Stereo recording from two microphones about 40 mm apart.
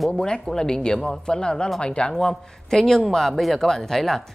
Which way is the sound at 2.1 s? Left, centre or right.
Centre.